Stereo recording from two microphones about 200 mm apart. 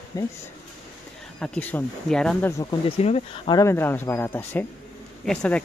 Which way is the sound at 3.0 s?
30° left (ahead or behind).